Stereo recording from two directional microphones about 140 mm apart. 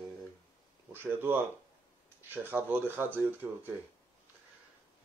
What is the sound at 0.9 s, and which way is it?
Speech, 15° right (ahead or behind).